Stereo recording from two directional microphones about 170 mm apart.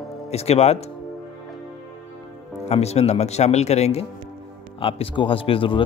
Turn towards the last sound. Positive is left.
turn(degrees=30)  # may be behind; listen again after turning